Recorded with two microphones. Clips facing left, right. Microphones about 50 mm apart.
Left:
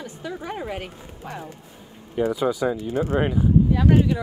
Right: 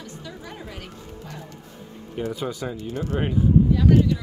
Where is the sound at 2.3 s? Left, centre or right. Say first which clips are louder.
Left 7 dB; centre; by 4.2 s left.